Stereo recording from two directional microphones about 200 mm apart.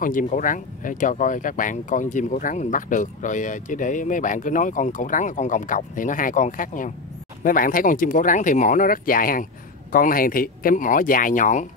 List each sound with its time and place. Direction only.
0.0 s speech: 40° left (ahead or behind)